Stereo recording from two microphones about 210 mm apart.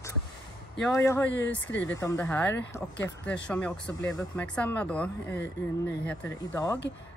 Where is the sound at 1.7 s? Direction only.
60° left (ahead or behind).